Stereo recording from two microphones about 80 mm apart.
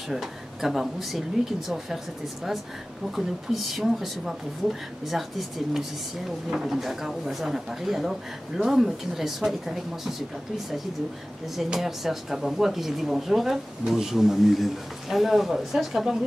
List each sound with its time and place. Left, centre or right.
0.1 s speech: centre
3.2 s speech: centre
11.5 s speech: centre